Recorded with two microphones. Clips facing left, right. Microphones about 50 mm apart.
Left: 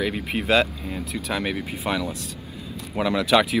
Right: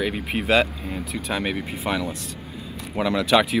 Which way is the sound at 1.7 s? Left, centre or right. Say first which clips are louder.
Even; centre.